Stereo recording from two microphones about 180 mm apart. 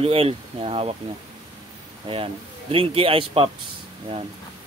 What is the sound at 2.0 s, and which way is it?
A man's voice, 30° right (ahead or behind).